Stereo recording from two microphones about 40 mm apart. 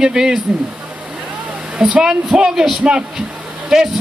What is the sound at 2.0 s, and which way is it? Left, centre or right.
Speech, centre.